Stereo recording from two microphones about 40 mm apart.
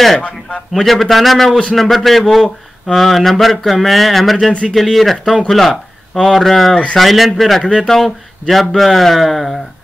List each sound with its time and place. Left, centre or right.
0.7 s speech: centre
4.5 s speech: left
4.9 s speech: centre
6.7 s speech: left
7.0 s speech: centre